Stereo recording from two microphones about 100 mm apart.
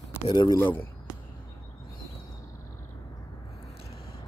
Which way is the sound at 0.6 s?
20° left (ahead or behind).